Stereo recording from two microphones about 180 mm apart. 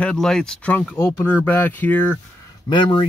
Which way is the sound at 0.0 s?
5° left (ahead or behind).